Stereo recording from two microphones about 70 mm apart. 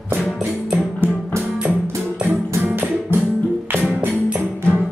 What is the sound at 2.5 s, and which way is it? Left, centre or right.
Music, right.